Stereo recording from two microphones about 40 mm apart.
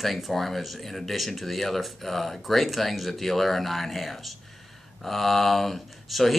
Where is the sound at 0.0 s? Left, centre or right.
Centre.